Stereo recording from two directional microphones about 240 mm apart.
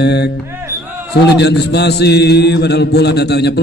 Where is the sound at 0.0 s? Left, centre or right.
Left.